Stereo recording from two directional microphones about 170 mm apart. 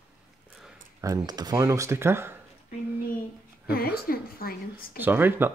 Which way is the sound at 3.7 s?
65° left (ahead or behind).